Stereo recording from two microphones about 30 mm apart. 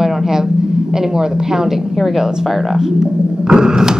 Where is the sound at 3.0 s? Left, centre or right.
Right.